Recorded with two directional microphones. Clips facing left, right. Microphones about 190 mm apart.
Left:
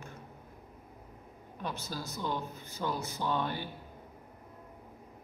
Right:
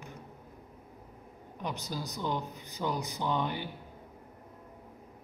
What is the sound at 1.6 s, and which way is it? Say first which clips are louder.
Speech: right 2 dB; 15° right (ahead or behind).